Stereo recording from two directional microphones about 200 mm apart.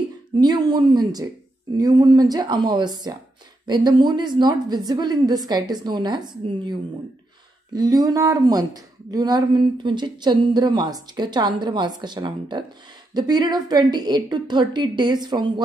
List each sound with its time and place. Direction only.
0.4 s speech: 20° right (ahead or behind)